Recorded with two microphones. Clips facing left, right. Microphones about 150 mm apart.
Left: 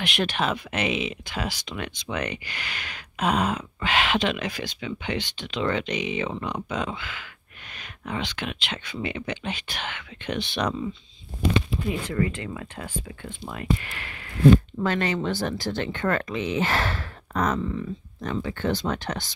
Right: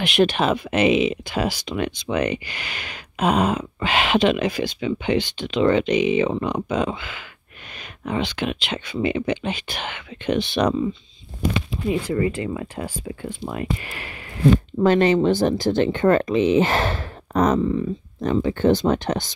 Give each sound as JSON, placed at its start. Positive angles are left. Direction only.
{"t": 0.0, "sound": "speech", "side_deg": -5}
{"t": 5.1, "sound": "speech", "side_deg": -5}
{"t": 5.6, "sound": "speech", "side_deg": -15}
{"t": 5.9, "sound": "speech", "side_deg": -5}
{"t": 6.2, "sound": "speech", "side_deg": -25}
{"t": 8.2, "sound": "speech", "side_deg": -5}
{"t": 12.1, "sound": "speech", "side_deg": -10}